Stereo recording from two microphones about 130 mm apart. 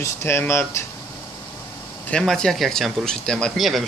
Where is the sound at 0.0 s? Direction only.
20° left (ahead or behind).